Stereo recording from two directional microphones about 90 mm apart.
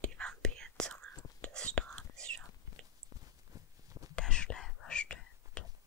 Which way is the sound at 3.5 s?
40° right (ahead or behind).